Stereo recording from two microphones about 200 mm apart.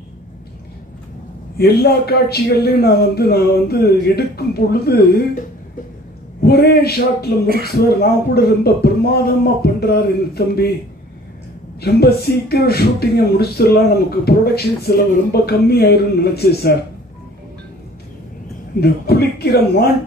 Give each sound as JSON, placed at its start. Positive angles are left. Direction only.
{"t": 1.6, "sound": "speech", "side_deg": 55}
{"t": 6.4, "sound": "speech", "side_deg": 55}
{"t": 11.8, "sound": "speech", "side_deg": 50}
{"t": 18.8, "sound": "speech", "side_deg": 50}